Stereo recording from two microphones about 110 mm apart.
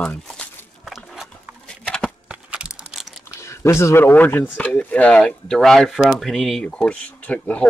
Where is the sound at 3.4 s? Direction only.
25° left (ahead or behind); by 7.7 s 10° left (ahead or behind).